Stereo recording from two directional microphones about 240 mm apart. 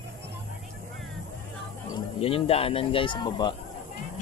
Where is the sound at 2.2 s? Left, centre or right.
Left.